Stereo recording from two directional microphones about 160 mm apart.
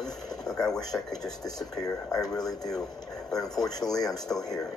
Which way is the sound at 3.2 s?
5° left (ahead or behind).